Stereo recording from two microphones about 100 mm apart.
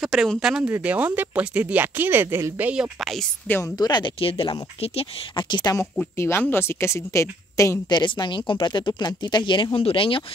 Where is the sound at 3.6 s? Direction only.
40° left (ahead or behind).